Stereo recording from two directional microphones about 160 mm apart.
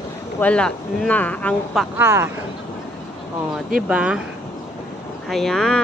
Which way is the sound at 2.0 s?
15° right (ahead or behind).